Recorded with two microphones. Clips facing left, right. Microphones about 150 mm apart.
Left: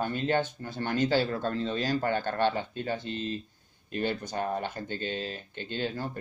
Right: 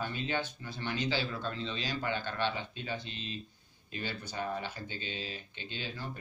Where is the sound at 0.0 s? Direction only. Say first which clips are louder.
Left 7 dB; 50° left (ahead or behind).